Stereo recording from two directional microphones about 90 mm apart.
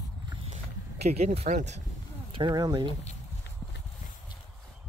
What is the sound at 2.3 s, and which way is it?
Speech, 60° right (ahead or behind).